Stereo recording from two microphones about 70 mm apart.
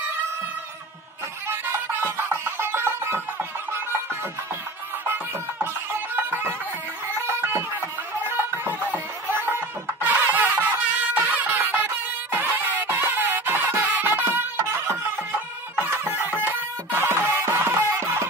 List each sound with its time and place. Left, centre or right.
1.5 s music: right
5.0 s music: right
8.8 s music: right